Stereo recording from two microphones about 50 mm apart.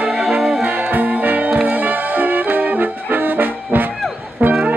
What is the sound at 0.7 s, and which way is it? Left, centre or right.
Music, right.